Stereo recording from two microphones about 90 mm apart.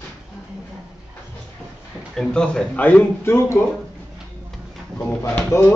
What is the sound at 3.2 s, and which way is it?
Speech, 30° left (ahead or behind).